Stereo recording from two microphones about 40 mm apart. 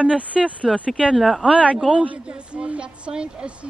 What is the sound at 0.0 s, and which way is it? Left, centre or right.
Speech, right.